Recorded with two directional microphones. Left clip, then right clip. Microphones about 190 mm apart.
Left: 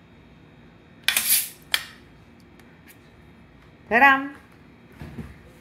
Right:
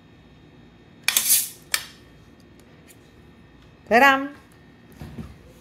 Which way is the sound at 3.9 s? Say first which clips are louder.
Right 1 dB; 90° right.